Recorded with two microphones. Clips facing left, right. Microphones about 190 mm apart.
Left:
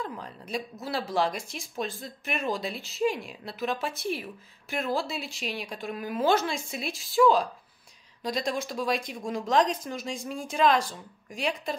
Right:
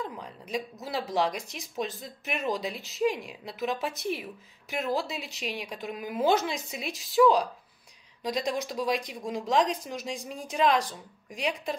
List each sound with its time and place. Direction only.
0.0 s a woman's voice: 15° right (ahead or behind)
7.2 s speech: 5° right (ahead or behind)
8.2 s a woman's voice: 15° right (ahead or behind)